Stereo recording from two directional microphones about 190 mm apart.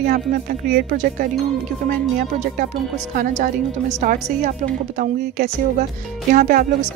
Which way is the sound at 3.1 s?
40° right (ahead or behind).